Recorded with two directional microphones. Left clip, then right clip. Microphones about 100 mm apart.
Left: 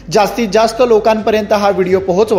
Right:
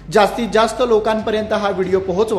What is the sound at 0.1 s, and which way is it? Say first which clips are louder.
A man's voice: left 3 dB; 60° left (ahead or behind).